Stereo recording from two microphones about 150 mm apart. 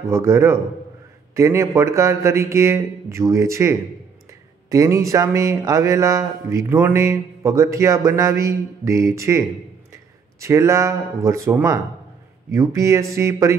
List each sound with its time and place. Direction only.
0.1 s speech: 20° right (ahead or behind)
10.4 s speech: 20° right (ahead or behind)